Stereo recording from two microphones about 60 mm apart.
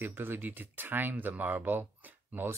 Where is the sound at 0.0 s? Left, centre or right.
Right.